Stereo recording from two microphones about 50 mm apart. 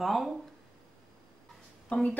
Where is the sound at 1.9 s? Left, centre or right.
Left.